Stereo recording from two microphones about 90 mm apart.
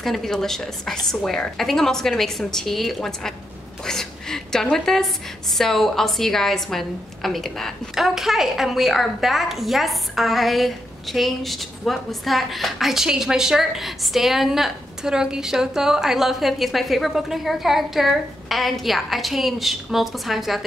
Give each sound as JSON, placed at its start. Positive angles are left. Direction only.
{"t": 0.0, "sound": "a woman's voice", "side_deg": 5}